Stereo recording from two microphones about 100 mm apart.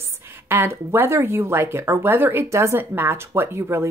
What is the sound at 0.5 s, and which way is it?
Speech, 25° right (ahead or behind).